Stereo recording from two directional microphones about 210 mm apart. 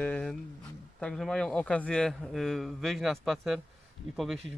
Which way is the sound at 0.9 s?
5° left (ahead or behind).